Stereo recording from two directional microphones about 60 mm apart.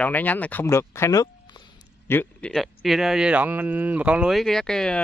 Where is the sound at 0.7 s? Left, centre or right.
Left.